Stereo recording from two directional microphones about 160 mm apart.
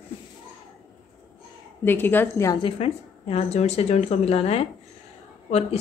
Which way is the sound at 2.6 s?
40° left (ahead or behind).